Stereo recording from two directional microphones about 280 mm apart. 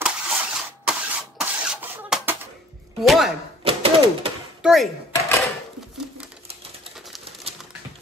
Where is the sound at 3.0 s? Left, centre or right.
Centre.